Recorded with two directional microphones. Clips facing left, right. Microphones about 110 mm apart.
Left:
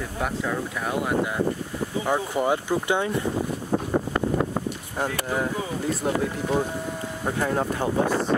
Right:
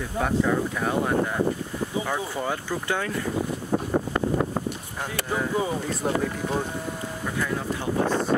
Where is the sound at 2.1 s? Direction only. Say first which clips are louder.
Left 5 dB; 15° left (ahead or behind).